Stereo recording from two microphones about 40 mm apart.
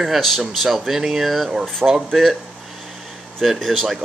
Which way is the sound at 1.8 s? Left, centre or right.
Right.